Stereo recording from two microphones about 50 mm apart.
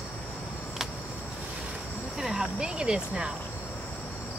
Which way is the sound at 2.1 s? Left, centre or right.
Centre.